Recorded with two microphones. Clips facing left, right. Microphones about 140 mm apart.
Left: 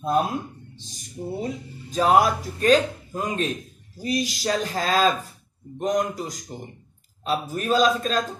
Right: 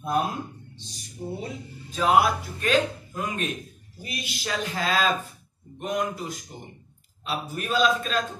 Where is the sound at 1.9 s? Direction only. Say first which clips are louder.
Left 2 dB; 40° left (ahead or behind).